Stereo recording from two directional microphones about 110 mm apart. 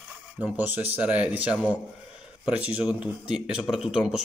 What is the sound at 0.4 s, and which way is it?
Speech, 15° right (ahead or behind).